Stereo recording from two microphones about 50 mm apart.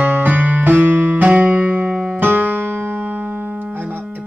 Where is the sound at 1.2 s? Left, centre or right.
Right.